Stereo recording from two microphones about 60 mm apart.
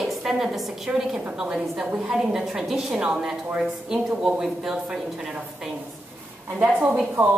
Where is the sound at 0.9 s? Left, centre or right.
Centre.